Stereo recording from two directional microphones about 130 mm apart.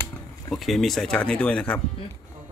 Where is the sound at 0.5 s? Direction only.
Centre (ahead or behind).